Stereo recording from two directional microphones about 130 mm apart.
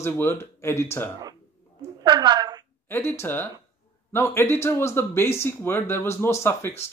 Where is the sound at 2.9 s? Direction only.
20° left (ahead or behind).